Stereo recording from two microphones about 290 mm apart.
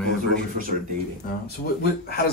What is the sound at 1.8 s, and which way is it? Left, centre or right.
Speech, left.